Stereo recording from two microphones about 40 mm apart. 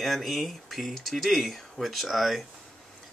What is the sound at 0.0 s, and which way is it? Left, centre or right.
Speech, centre.